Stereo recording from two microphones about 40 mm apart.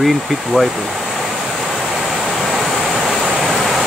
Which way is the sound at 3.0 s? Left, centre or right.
Centre.